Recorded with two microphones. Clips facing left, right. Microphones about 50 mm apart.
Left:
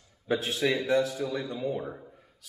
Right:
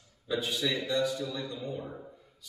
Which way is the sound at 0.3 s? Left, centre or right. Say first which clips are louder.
Left 4 dB; left.